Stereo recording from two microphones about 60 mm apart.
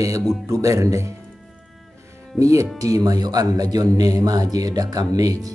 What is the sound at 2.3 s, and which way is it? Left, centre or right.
Speech, right.